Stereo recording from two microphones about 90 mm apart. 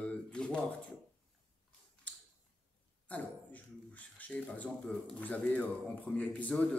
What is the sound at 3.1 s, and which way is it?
Speech, 15° left (ahead or behind).